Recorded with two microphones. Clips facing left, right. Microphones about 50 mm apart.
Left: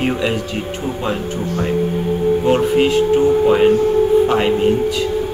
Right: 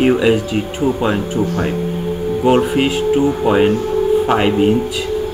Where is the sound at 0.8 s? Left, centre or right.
Centre.